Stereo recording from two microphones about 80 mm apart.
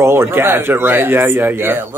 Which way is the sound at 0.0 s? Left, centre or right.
Right.